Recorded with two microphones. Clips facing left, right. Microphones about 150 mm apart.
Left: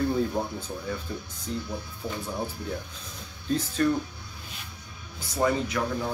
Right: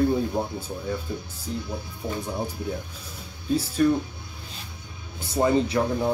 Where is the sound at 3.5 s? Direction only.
10° right (ahead or behind).